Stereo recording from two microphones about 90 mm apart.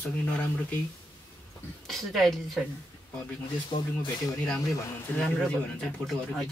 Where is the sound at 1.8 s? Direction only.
Centre (ahead or behind).